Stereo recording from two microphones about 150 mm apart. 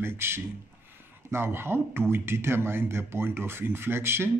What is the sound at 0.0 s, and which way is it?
Speech, 15° right (ahead or behind).